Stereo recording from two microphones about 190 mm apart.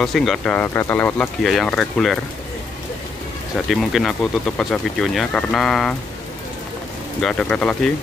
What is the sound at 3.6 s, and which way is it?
Speech, centre (ahead or behind).